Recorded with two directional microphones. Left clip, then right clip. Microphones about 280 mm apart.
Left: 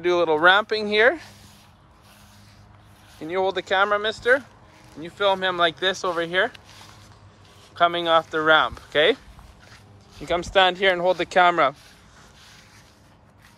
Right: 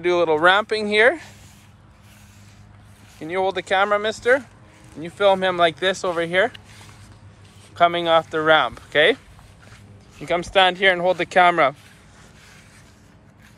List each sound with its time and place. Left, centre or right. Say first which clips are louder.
0.0 s speech: right 1 dB; centre
3.2 s speech: right 1 dB; centre
7.7 s speech: right 2 dB; centre
10.2 s speech: right 2 dB; centre